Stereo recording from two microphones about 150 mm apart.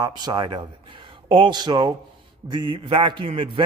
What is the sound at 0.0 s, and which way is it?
A man's voice, 25° right (ahead or behind).